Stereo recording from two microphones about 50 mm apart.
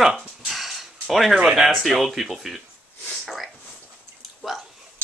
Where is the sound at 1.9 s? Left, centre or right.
Centre.